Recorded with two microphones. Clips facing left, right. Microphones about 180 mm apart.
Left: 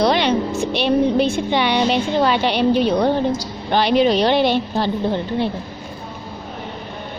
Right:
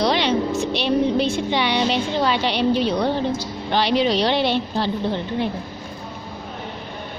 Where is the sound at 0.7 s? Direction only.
55° left (ahead or behind).